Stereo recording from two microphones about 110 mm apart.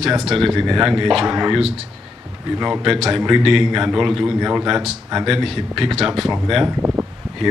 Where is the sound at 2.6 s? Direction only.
5° right (ahead or behind).